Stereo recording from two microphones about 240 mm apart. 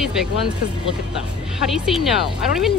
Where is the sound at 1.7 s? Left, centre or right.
Centre.